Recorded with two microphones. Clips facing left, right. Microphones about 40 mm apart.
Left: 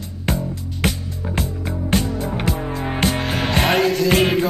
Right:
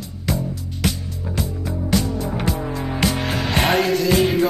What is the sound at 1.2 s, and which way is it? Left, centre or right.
Music, left.